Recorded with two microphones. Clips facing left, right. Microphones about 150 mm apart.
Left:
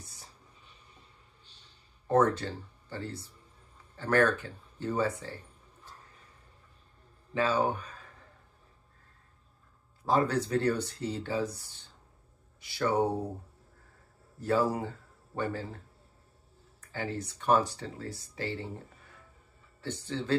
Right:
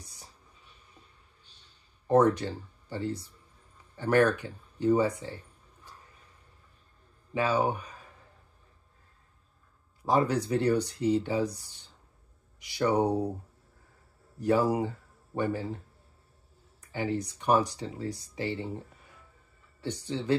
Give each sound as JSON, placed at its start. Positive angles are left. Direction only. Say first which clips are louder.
{"t": 0.0, "sound": "a sound", "louder": "even", "side_deg": -15}
{"t": 2.0, "sound": "speech", "louder": "right 3 dB", "side_deg": -15}
{"t": 7.3, "sound": "speech", "louder": "right 1 dB", "side_deg": -10}
{"t": 10.0, "sound": "speech", "louder": "right 1 dB", "side_deg": -15}
{"t": 14.4, "sound": "speech", "louder": "right 3 dB", "side_deg": -15}
{"t": 16.8, "sound": "speech", "louder": "right 5 dB", "side_deg": -15}
{"t": 19.8, "sound": "speech", "louder": "right 2 dB", "side_deg": -15}